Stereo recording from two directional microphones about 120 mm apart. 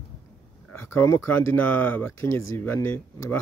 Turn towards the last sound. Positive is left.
turn(degrees=15)  # may be behind; listen again after turning